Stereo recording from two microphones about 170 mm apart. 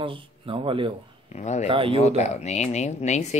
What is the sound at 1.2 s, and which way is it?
Speech, 45° left (ahead or behind).